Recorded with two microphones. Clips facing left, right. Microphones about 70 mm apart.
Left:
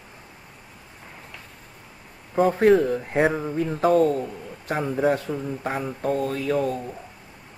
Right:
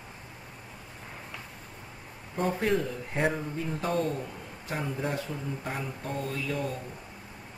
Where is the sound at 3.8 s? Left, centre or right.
Left.